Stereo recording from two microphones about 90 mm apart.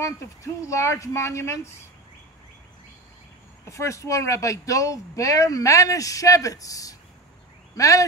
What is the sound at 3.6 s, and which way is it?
Speech, 35° left (ahead or behind).